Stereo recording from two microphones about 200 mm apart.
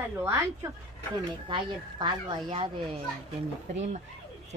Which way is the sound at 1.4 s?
25° right (ahead or behind).